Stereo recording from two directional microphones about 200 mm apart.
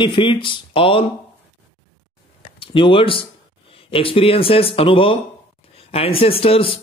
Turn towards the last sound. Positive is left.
turn(degrees=30)  # may be behind; listen again after turning